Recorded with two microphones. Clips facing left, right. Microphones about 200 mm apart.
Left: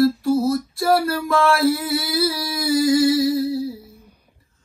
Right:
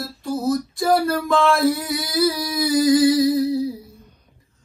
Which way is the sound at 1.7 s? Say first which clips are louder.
Left 1 dB; 15° right (ahead or behind).